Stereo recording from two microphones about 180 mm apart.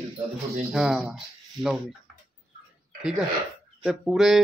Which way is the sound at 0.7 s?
Centre (ahead or behind).